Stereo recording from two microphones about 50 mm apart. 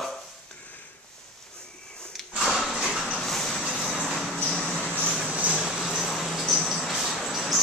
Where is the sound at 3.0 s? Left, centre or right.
Centre.